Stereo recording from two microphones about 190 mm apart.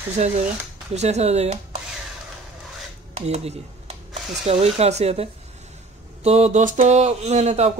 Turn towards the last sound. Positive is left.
turn(degrees=-35)  # may be behind; listen again after turning